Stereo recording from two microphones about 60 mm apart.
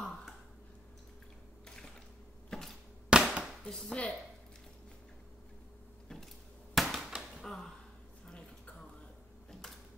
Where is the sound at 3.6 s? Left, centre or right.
Centre.